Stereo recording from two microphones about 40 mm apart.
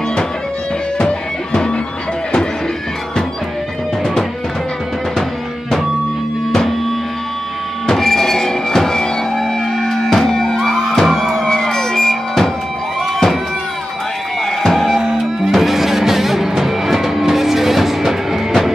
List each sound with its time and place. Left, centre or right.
0.9 s music: left
7.8 s music: centre
11.4 s music: centre
14.4 s music: centre
15.0 s music: centre
15.5 s music: centre